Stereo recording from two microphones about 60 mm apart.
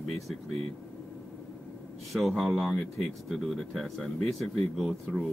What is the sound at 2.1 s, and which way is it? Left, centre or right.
Speech, centre.